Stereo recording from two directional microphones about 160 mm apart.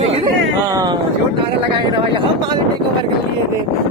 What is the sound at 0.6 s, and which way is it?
Speech, 20° right (ahead or behind).